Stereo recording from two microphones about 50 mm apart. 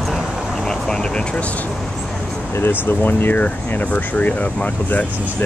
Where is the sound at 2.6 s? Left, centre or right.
Left.